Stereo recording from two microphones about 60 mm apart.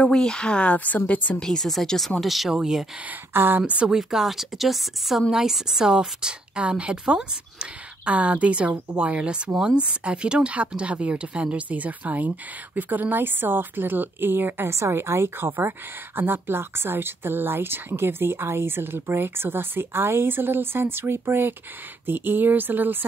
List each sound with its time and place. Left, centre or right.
0.0 s speech: centre
1.4 s speech: centre
3.3 s speech: right
3.6 s a woman's voice: centre
3.9 s a woman's voice: centre; by 14.7 s right
14.7 s a woman's voice: right